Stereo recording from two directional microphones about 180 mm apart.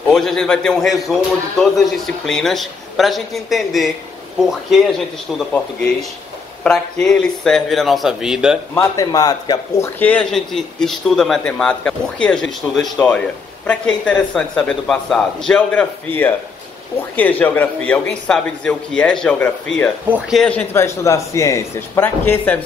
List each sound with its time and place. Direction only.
0.1 s speech: centre (ahead or behind)
8.7 s speech: 20° left (ahead or behind)
9.9 s speech: 10° left (ahead or behind)
17.1 s a man's voice: 10° left (ahead or behind)